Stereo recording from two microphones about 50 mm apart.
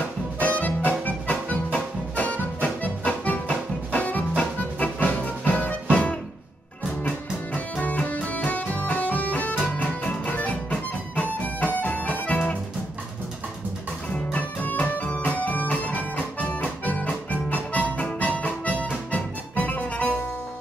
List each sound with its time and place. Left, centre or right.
0.4 s music: left
14.3 s music: left